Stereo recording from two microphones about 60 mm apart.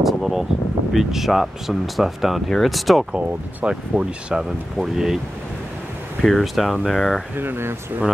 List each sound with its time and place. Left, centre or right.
0.0 s a sound: centre
0.9 s speech: centre
3.1 s speech: centre
6.2 s speech: centre
7.3 s speech: right